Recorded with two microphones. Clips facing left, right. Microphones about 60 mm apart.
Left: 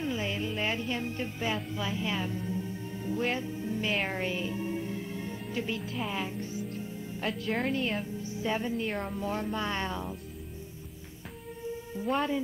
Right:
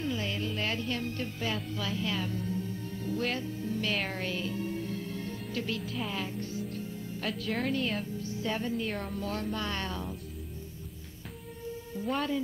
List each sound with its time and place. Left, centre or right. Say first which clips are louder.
0.0 s music: left 1 dB; centre
5.8 s speech: even; centre
6.0 s speech: left 1 dB; centre
7.2 s speech: left 1 dB; centre
8.2 s music: left 2 dB; centre
8.7 s speech: left 1 dB; centre
9.1 s speech: left 2 dB; centre